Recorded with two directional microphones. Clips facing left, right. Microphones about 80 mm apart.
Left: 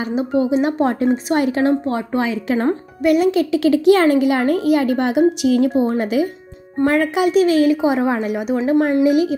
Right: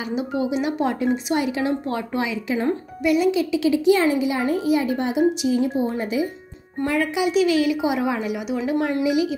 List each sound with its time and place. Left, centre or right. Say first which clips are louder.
0.0 s a woman's voice: left 6 dB; left
1.9 s speech: left 5 dB; left
6.8 s a woman's voice: left 6 dB; left